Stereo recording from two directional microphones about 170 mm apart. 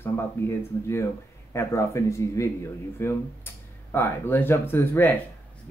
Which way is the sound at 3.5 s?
15° left (ahead or behind).